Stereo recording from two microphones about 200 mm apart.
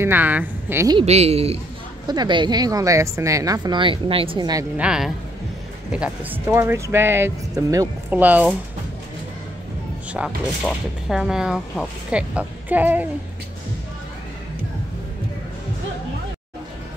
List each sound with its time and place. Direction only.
0.0 s a woman's voice: 10° right (ahead or behind)
0.9 s a woman's voice: 30° right (ahead or behind)
4.7 s speech: 5° right (ahead or behind)
10.1 s speech: 5° right (ahead or behind)